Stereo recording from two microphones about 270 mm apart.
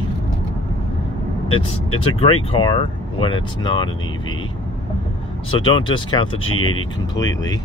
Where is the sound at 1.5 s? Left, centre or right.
Left.